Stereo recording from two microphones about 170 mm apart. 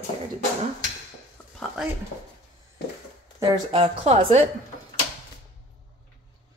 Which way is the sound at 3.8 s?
40° right (ahead or behind).